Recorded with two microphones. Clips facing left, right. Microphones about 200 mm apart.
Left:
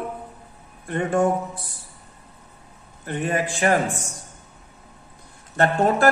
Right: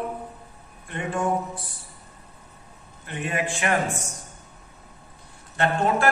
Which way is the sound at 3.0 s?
40° left (ahead or behind).